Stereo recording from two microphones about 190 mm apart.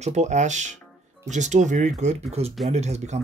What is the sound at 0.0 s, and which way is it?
Speech, 35° right (ahead or behind).